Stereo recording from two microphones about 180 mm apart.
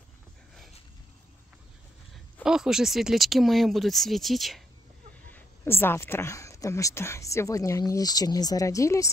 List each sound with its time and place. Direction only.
2.4 s speech: 5° right (ahead or behind)
5.3 s a woman's voice: 15° left (ahead or behind)